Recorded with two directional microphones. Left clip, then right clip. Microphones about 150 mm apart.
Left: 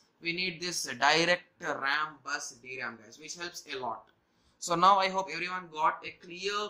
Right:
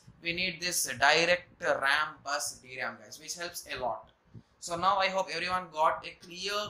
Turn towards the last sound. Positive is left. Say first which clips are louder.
# even
turn(degrees=15)  # may be behind; listen again after turning